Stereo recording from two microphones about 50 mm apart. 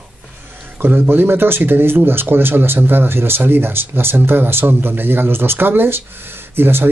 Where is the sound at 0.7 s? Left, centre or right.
Right.